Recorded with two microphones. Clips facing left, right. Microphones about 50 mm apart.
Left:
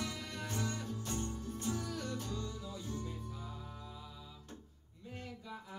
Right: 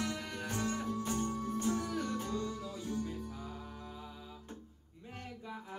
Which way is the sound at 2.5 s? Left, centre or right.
Right.